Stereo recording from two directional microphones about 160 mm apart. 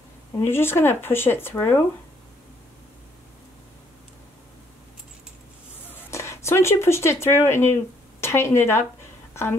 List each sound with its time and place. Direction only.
0.4 s speech: 15° left (ahead or behind)
5.9 s a sound: 15° left (ahead or behind)
8.2 s a woman's voice: 15° left (ahead or behind)